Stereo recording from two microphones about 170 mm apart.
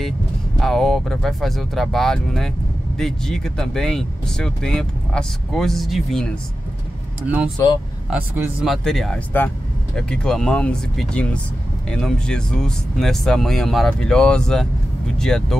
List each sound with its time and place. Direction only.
0.6 s speech: centre (ahead or behind)
8.6 s speech: centre (ahead or behind)